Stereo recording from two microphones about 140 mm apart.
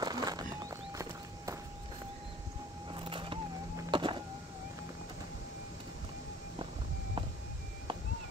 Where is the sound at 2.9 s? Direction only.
35° right (ahead or behind).